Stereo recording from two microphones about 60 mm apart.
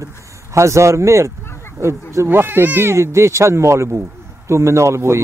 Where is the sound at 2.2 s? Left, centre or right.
Right.